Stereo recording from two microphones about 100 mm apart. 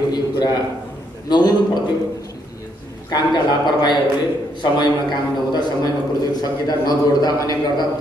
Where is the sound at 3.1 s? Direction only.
45° left (ahead or behind).